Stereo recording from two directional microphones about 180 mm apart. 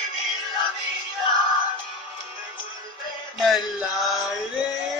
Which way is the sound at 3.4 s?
Centre (ahead or behind).